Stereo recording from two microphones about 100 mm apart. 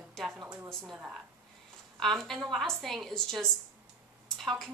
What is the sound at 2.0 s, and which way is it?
A woman's voice, 5° left (ahead or behind).